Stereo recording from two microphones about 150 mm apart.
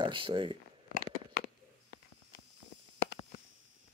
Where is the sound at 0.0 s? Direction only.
35° right (ahead or behind).